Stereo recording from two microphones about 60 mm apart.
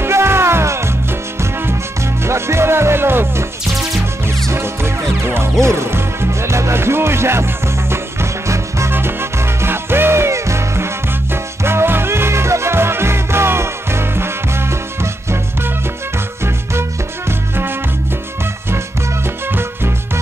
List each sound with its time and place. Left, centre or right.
0.0 s music: right
4.5 s music: right
8.9 s music: right
19.2 s music: right